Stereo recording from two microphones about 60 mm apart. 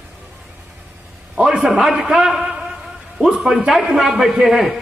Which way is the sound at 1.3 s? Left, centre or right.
Centre.